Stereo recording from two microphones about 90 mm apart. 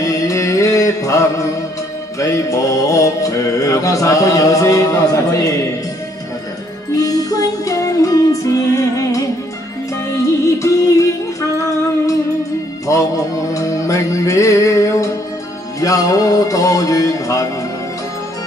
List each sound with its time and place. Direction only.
0.0 s music: 40° left (ahead or behind)
6.9 s music: 40° left (ahead or behind)
10.4 s music: 35° left (ahead or behind)
13.5 s music: 35° left (ahead or behind)